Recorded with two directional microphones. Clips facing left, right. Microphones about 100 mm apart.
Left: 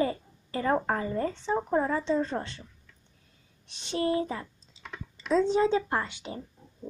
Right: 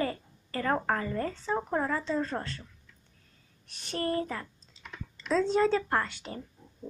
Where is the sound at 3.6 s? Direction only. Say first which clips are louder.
Left 4 dB; 20° left (ahead or behind).